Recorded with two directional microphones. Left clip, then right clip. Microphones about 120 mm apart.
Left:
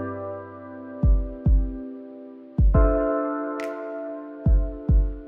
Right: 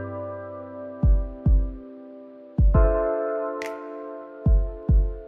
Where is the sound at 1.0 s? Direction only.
Centre (ahead or behind).